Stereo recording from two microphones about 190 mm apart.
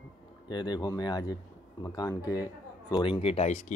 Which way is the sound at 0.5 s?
20° left (ahead or behind).